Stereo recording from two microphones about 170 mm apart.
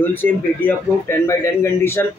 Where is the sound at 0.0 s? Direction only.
10° left (ahead or behind).